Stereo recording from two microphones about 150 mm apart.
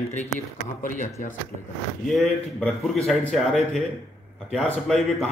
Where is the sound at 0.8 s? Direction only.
60° left (ahead or behind).